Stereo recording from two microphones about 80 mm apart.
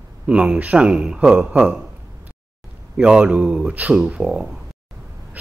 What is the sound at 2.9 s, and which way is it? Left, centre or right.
Speech, centre.